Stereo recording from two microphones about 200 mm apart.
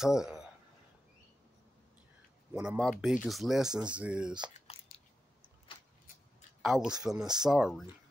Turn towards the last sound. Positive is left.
turn(degrees=0)  # may be behind; listen again after turning